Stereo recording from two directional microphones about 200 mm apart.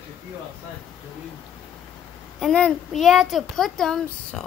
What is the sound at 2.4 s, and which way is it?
A child's voice, 5° left (ahead or behind).